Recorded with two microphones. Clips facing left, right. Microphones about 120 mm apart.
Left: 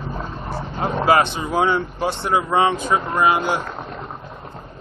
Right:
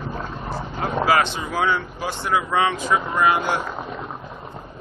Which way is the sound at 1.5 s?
25° left (ahead or behind).